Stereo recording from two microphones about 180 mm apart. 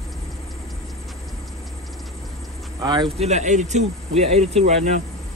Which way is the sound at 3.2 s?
40° right (ahead or behind).